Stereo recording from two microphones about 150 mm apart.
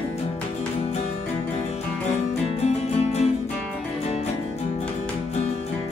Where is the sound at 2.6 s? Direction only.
45° left (ahead or behind).